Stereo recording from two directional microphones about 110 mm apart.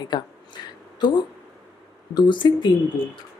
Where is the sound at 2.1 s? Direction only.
45° left (ahead or behind).